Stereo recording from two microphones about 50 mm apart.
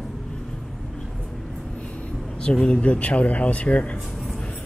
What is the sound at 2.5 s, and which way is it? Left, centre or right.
Speech, centre.